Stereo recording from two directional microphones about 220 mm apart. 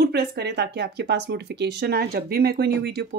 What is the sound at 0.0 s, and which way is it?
Speech, 50° right (ahead or behind).